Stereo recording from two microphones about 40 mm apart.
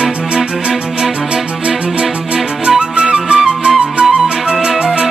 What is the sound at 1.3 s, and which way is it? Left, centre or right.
Music, centre.